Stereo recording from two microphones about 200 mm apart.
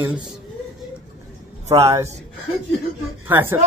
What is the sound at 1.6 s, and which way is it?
Speech, 30° right (ahead or behind).